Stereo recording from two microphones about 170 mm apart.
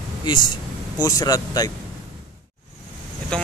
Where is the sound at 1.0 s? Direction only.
20° left (ahead or behind).